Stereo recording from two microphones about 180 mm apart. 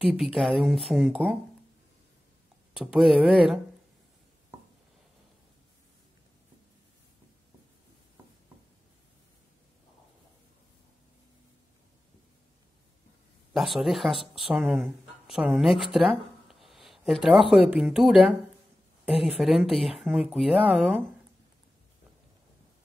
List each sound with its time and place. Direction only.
0.1 s speech: centre (ahead or behind)
2.7 s speech: 5° right (ahead or behind)
13.5 s speech: centre (ahead or behind)